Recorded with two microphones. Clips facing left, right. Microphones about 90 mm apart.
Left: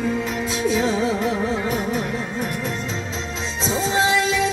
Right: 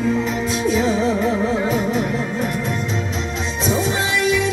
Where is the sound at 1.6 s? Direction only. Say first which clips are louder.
Right 4 dB; 15° right (ahead or behind).